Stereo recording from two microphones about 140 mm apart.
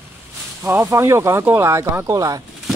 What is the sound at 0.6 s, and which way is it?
Speech, 15° right (ahead or behind).